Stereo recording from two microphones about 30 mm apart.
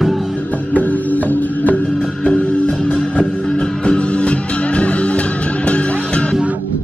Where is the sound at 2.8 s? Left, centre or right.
Left.